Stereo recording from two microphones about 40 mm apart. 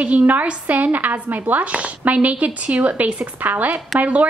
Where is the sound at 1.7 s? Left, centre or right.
Right.